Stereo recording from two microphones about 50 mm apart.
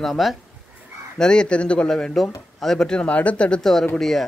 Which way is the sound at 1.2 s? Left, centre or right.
Centre.